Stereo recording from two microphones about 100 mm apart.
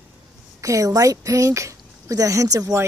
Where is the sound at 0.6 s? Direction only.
35° right (ahead or behind).